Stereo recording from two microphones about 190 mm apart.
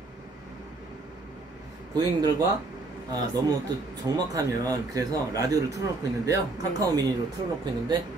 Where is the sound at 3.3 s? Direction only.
20° right (ahead or behind).